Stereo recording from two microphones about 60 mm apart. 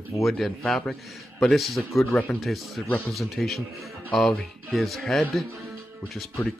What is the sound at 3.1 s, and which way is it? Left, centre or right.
Speech, centre.